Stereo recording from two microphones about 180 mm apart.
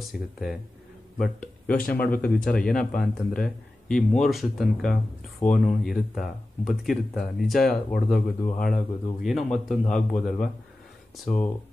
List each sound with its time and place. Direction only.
0.1 s speech: centre (ahead or behind)
1.7 s speech: 50° left (ahead or behind)
2.0 s speech: 10° left (ahead or behind)